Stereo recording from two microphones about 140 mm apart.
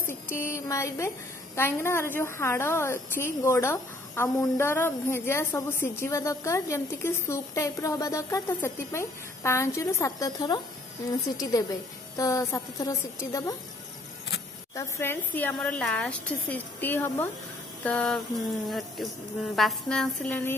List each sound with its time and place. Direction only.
0.0 s a woman's voice: 15° left (ahead or behind)
14.8 s a woman's voice: 15° left (ahead or behind)